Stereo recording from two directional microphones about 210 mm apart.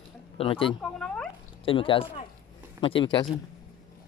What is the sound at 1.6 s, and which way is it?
Speech, 25° left (ahead or behind).